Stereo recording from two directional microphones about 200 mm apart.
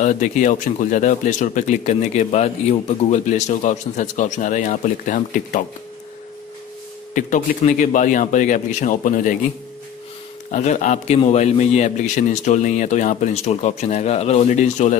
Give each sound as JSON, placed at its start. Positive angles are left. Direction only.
{"t": 0.0, "sound": "speech", "side_deg": 40}
{"t": 7.2, "sound": "speech", "side_deg": 40}
{"t": 10.5, "sound": "speech", "side_deg": 35}